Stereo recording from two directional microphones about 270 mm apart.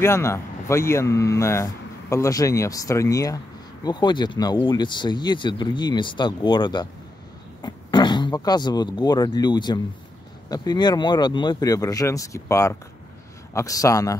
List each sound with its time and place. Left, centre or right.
0.0 s speech: centre